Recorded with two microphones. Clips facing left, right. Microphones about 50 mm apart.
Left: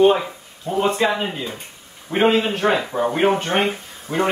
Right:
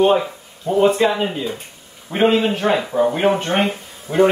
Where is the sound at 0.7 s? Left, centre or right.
Centre.